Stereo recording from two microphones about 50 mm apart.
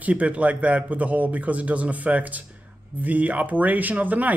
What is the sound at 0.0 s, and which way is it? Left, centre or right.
A man's voice, right.